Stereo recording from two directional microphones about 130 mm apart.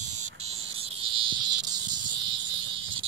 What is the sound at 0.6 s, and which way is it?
Cricket, 45° right (ahead or behind).